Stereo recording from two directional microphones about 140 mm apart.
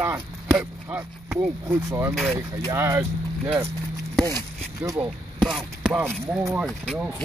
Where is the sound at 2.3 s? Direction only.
20° right (ahead or behind).